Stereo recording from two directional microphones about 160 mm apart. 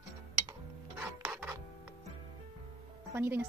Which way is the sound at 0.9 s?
10° right (ahead or behind).